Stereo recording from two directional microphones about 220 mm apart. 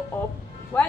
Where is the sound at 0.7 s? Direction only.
10° left (ahead or behind).